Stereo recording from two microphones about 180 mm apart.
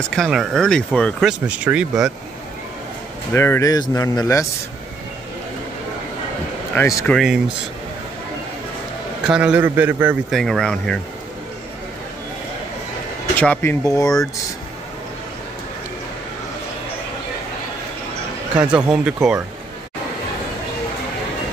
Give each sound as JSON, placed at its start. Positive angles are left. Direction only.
{"t": 0.1, "sound": "speech", "side_deg": 0}
{"t": 1.5, "sound": "a man's voice", "side_deg": -5}
{"t": 3.3, "sound": "speech", "side_deg": 15}
{"t": 6.7, "sound": "speech", "side_deg": 15}
{"t": 7.1, "sound": "speech", "side_deg": 0}
{"t": 9.2, "sound": "a man's voice", "side_deg": -5}
{"t": 10.3, "sound": "speech", "side_deg": 0}
{"t": 13.4, "sound": "speech", "side_deg": 10}
{"t": 18.5, "sound": "speech", "side_deg": -5}